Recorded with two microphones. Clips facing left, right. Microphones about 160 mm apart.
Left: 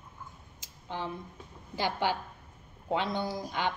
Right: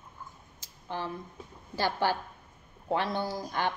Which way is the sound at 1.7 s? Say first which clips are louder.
Right 2 dB; 15° left (ahead or behind).